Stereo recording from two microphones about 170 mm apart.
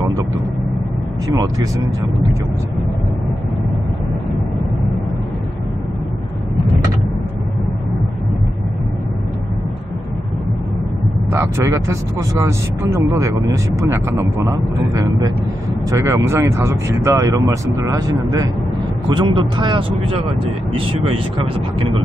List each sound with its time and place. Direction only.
11.3 s speech: 15° right (ahead or behind); by 21.2 s 35° right (ahead or behind)